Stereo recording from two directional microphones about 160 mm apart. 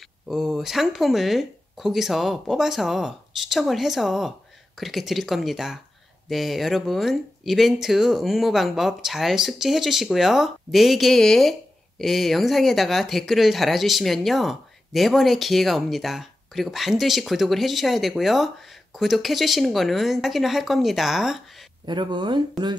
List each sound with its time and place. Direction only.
0.3 s speech: centre (ahead or behind)
21.8 s speech: 30° right (ahead or behind)